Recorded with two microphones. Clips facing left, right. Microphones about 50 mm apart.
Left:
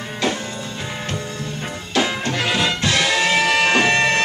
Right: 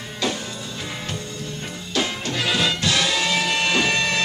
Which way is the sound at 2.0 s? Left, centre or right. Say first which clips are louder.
Left 5 dB; left.